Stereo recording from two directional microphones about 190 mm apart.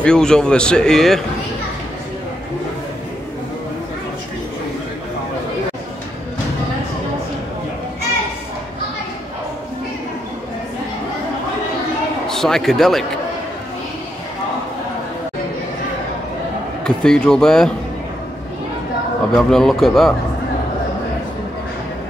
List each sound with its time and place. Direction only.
0.0 s a man's voice: 5° left (ahead or behind)
12.3 s speech: centre (ahead or behind)
16.8 s a man's voice: 5° left (ahead or behind)
19.3 s a man's voice: centre (ahead or behind)